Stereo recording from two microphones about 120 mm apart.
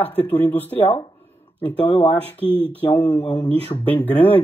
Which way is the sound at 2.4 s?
50° right (ahead or behind).